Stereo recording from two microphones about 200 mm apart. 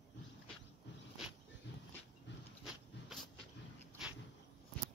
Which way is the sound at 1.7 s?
60° left (ahead or behind).